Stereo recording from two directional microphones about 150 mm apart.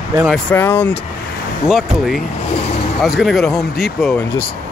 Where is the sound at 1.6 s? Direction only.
Centre (ahead or behind).